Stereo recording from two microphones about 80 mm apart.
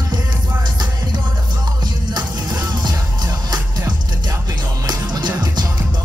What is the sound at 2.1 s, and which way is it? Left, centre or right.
Music, right.